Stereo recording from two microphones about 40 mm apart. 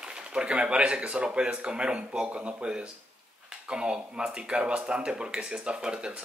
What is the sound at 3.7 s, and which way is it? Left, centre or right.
Speech, right.